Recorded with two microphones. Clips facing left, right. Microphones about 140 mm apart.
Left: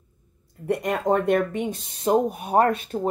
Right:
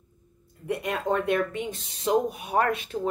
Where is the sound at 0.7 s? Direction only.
65° left (ahead or behind).